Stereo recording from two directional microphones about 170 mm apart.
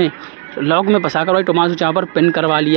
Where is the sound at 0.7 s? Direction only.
10° right (ahead or behind).